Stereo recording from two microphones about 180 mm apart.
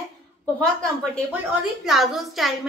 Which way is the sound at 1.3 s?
5° right (ahead or behind).